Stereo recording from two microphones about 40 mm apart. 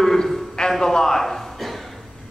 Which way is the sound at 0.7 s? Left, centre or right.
Centre.